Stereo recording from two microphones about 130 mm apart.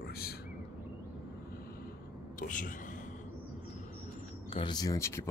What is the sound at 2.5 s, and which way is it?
Speech, 90° left.